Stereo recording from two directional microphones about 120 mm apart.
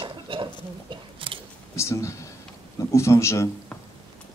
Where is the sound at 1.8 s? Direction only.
25° left (ahead or behind).